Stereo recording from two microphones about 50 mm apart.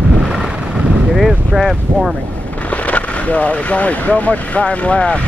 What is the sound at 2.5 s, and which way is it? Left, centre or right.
Vehicle, left.